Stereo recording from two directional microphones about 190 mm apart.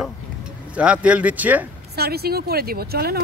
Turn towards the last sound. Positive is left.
turn(degrees=-55)  # may be behind; listen again after turning